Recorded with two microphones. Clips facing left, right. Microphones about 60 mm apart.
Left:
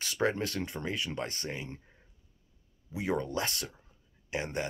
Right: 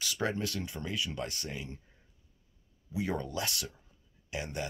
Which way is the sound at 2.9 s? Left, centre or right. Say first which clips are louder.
Left 2 dB; left.